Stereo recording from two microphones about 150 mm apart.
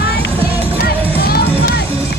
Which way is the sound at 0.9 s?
90° left.